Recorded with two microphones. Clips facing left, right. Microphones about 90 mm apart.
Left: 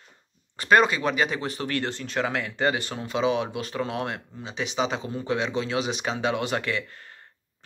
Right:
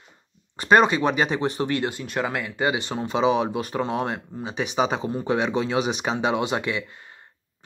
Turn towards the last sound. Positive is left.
turn(degrees=-15)  # may be behind; listen again after turning